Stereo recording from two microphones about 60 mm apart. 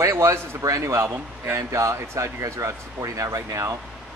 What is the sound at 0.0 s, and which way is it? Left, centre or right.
A man's voice, right.